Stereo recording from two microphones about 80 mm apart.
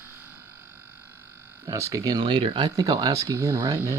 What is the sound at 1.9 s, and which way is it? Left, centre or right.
Speech, right.